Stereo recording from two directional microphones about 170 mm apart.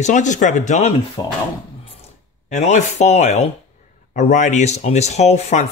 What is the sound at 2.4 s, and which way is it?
Speech, 45° left (ahead or behind).